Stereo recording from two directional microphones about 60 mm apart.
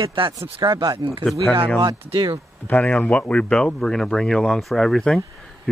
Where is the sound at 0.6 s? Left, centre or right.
Right.